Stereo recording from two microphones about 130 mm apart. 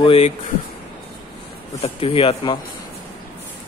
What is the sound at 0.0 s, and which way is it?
Speech, 45° left (ahead or behind).